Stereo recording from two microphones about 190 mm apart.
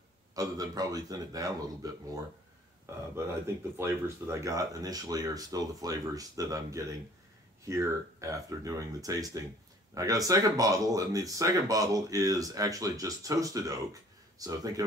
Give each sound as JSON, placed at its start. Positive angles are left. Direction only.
{"t": 0.4, "sound": "a man's voice", "side_deg": -20}
{"t": 2.9, "sound": "a man's voice", "side_deg": -15}